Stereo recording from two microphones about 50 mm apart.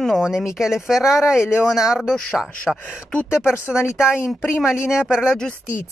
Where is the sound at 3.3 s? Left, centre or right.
Left.